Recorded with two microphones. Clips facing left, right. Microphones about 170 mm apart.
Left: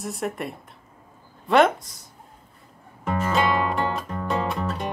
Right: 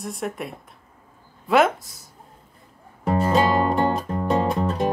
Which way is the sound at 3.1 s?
35° right (ahead or behind).